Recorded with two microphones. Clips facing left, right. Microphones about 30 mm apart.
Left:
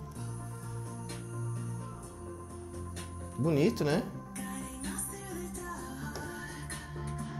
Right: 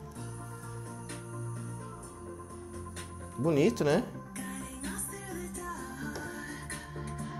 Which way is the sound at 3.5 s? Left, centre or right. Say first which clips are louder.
Right 2 dB; right.